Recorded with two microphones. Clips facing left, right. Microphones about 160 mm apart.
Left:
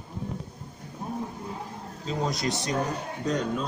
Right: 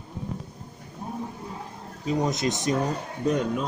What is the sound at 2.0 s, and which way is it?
Speech, 20° right (ahead or behind).